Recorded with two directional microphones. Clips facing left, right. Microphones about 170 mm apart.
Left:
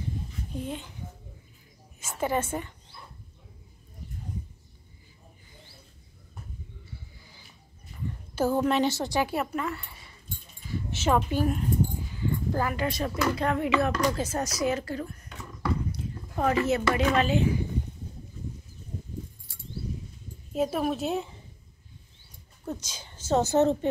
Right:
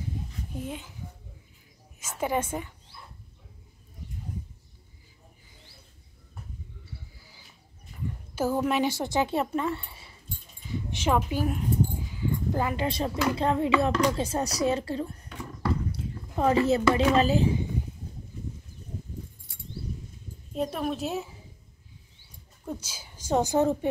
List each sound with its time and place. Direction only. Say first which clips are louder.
0.6 s a child's voice: left 1 dB; 5° right (ahead or behind)
2.0 s a woman's voice: even; 10° right (ahead or behind)
8.4 s speech: left 1 dB; 10° right (ahead or behind); by 9.8 s 25° right (ahead or behind)
10.9 s speech: left 1 dB; 10° right (ahead or behind)
12.1 s dog: even; 10° right (ahead or behind)
12.6 s speech: right 1 dB; 25° right (ahead or behind)
15.9 s a sound: even; 30° right (ahead or behind)
17.1 s speech: right 2 dB; 35° right (ahead or behind)
20.5 s a woman's voice: left 2 dB; 5° left (ahead or behind)
22.7 s a woman's voice: left 1 dB; 10° right (ahead or behind)